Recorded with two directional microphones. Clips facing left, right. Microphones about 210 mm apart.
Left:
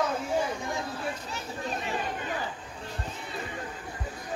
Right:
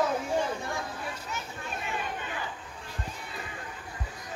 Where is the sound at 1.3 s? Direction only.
35° left (ahead or behind).